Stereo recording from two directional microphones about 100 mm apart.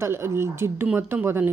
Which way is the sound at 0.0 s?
25° right (ahead or behind).